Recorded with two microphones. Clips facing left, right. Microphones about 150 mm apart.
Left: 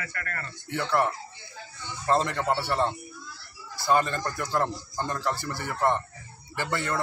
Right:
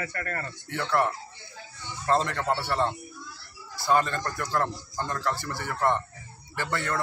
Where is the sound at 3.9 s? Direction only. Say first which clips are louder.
Even; 10° left (ahead or behind).